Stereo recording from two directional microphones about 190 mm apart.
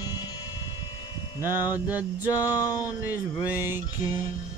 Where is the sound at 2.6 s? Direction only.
20° left (ahead or behind).